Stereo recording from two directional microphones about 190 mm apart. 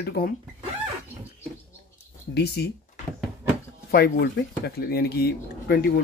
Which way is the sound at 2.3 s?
60° left (ahead or behind).